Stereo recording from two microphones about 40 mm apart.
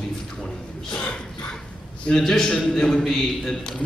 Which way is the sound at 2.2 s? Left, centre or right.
Centre.